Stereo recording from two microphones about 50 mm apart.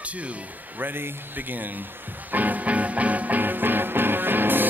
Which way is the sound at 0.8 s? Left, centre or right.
Right.